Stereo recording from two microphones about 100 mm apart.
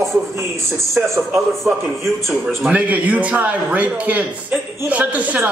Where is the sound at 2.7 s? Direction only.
15° right (ahead or behind).